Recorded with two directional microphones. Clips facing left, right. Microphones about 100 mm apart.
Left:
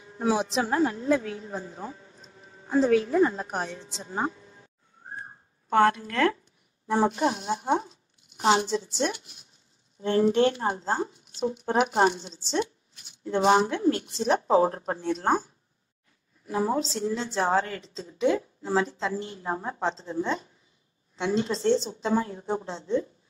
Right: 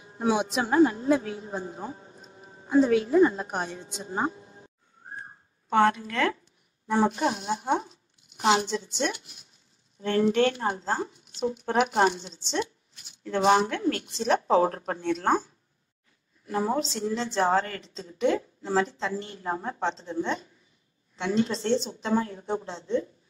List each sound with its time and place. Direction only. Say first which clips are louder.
0.2 s a woman's voice: even; 20° right (ahead or behind)
5.7 s a woman's voice: left 1 dB; centre (ahead or behind)
6.9 s a woman's voice: even; 25° left (ahead or behind)
16.4 s a woman's voice: left 1 dB; 5° left (ahead or behind)
19.8 s a woman's voice: even; 35° left (ahead or behind)